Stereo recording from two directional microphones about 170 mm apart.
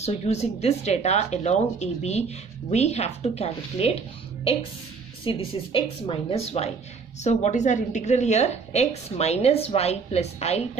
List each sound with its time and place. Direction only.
0.0 s speech: 40° left (ahead or behind)
5.2 s speech: 30° left (ahead or behind)